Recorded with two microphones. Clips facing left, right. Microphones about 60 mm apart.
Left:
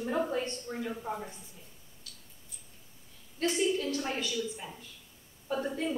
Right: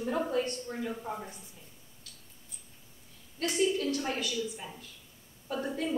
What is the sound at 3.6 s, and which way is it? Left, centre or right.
A woman's voice, centre.